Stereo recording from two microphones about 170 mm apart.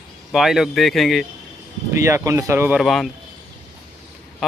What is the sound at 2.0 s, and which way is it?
Speech, 15° right (ahead or behind).